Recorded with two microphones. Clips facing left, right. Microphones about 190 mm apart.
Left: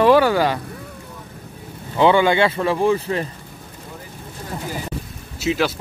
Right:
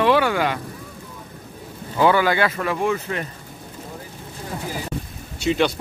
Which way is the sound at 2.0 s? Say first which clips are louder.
Left 3 dB; 25° left (ahead or behind).